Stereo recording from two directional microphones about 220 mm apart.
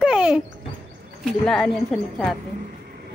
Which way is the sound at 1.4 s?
5° left (ahead or behind).